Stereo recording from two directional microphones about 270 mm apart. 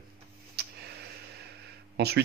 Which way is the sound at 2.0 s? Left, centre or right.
Right.